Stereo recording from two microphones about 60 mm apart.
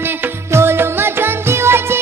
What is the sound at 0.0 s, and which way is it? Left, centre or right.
Music, right.